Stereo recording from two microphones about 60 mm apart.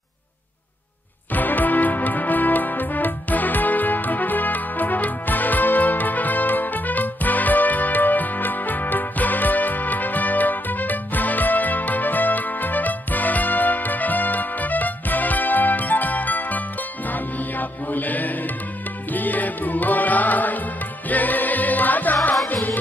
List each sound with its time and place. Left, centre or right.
1.3 s music: left